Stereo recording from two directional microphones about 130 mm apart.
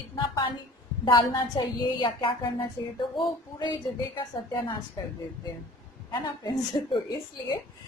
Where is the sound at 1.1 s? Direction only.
35° left (ahead or behind).